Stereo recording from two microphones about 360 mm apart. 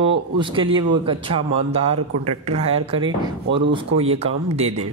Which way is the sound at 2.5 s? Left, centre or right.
Centre.